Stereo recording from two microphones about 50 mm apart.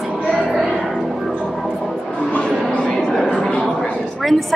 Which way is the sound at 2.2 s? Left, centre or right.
Left.